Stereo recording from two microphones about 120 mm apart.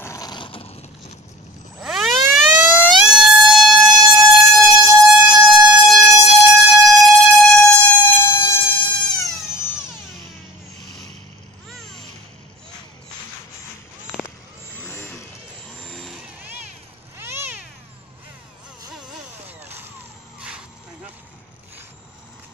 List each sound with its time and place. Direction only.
0.0 s a sound: 25° left (ahead or behind)
0.3 s a sound: 45° left (ahead or behind)
1.8 s siren: 5° right (ahead or behind)
7.3 s music: 5° left (ahead or behind)
7.6 s air horn: 15° left (ahead or behind)
14.8 s vehicle: 20° left (ahead or behind)
15.8 s vehicle: 5° left (ahead or behind)
16.2 s vehicle: 10° right (ahead or behind)
17.2 s cat: 20° right (ahead or behind)
20.3 s a sound: 10° right (ahead or behind)